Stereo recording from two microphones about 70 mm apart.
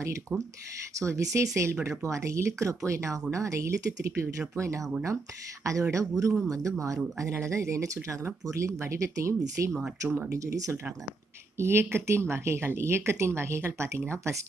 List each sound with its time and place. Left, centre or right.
0.3 s speech: centre
0.9 s speech: right
10.0 s speech: right
10.3 s speech: right